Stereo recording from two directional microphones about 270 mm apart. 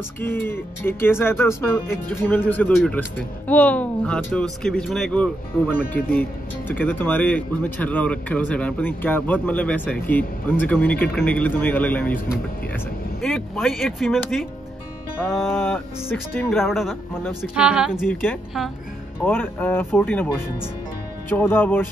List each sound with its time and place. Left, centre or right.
0.2 s speech: centre